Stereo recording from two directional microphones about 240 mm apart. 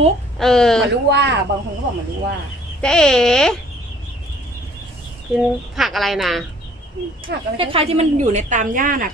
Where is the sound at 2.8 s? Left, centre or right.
Centre.